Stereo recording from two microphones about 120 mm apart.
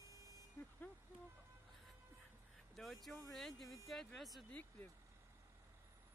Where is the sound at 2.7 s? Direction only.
Centre (ahead or behind).